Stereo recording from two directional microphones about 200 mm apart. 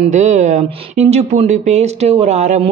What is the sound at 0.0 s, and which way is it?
Speech, 35° right (ahead or behind).